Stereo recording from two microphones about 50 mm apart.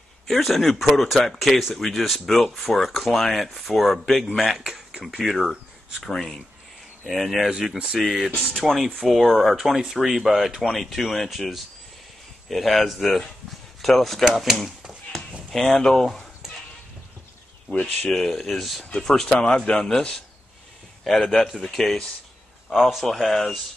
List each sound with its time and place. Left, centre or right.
0.3 s speech: centre
6.0 s a man's voice: centre
7.1 s speech: centre
14.8 s tap: centre
15.5 s a man's voice: centre
17.6 s speech: left
18.1 s speech: centre
18.9 s a man's voice: centre
22.7 s a man's voice: centre